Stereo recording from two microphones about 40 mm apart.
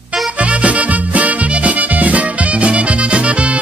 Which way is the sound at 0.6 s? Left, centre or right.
Right.